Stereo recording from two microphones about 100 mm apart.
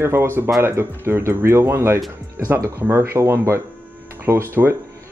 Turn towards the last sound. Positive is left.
turn(degrees=-25)  # may be behind; listen again after turning